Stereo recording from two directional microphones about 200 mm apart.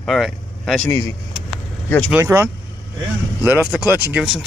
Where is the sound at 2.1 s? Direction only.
15° right (ahead or behind).